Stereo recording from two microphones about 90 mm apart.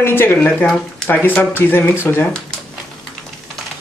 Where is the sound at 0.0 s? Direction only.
25° left (ahead or behind).